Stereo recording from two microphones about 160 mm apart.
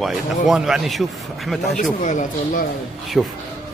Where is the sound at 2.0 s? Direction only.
50° left (ahead or behind).